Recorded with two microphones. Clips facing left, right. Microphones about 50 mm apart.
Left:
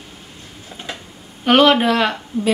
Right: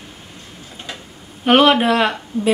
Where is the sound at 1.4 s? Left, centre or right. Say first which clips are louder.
Even; centre.